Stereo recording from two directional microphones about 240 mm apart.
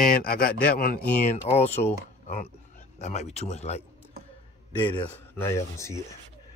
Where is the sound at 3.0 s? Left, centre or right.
Left.